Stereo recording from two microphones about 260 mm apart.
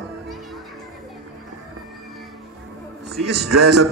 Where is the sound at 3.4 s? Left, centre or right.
Right.